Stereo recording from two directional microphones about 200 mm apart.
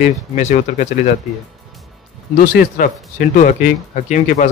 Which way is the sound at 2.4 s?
45° left (ahead or behind).